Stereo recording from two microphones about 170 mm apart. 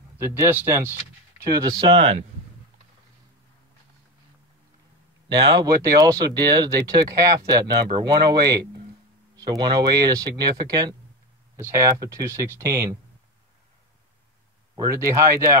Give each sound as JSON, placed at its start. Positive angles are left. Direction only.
{"t": 0.2, "sound": "speech", "side_deg": -10}
{"t": 1.5, "sound": "speech", "side_deg": -25}
{"t": 5.3, "sound": "speech", "side_deg": -25}
{"t": 14.8, "sound": "speech", "side_deg": -15}